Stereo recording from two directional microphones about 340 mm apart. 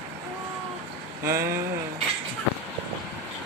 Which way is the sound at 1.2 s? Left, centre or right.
Centre.